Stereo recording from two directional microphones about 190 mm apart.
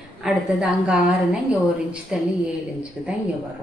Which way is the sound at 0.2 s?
5° right (ahead or behind).